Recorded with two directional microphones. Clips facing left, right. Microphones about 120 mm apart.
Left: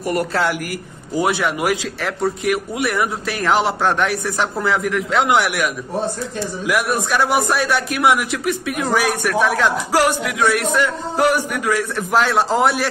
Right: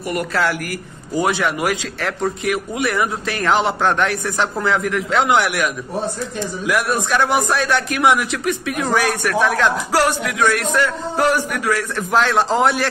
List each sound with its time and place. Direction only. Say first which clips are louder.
0.0 s a woman's voice: left 3 dB; 40° left (ahead or behind)
0.3 s a woman's voice: even; 25° left (ahead or behind)
1.1 s a man's voice: even; 10° left (ahead or behind)
6.7 s a man's voice: even; 10° left (ahead or behind)